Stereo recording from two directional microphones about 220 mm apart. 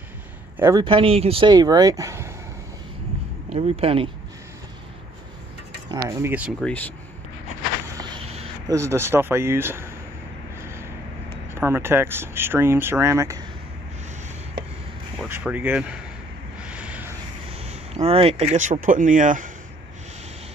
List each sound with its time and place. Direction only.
0.6 s a man's voice: 15° right (ahead or behind)
0.8 s speech: 25° right (ahead or behind)
3.4 s speech: 25° right (ahead or behind)
5.9 s speech: 15° right (ahead or behind)
6.6 s speech: 5° left (ahead or behind)
7.9 s a sound: 20° right (ahead or behind)
8.6 s speech: 15° right (ahead or behind)
10.6 s vehicle: 10° right (ahead or behind)
11.5 s speech: 10° right (ahead or behind)
15.2 s speech: 10° right (ahead or behind)
16.5 s vehicle: 5° right (ahead or behind)
17.5 s speech: 30° right (ahead or behind)